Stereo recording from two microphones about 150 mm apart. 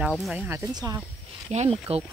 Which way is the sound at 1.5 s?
45° right (ahead or behind).